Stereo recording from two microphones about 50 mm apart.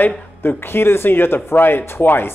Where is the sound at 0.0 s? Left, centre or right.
Left.